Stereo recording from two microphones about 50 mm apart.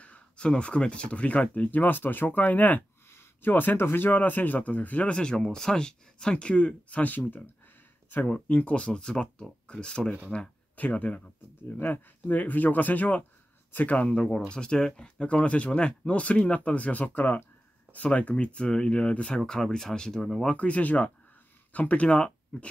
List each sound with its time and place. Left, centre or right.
0.0 s speech: left
3.1 s speech: left
4.1 s speech: left
8.3 s speech: left
14.1 s speech: centre
20.5 s speech: left